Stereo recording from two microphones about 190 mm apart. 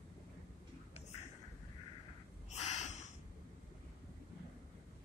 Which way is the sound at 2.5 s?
35° left (ahead or behind).